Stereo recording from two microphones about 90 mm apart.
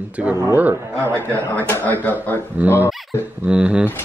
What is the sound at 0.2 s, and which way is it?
Speech, 15° right (ahead or behind).